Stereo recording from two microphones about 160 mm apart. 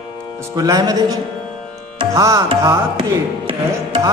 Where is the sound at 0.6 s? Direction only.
25° right (ahead or behind).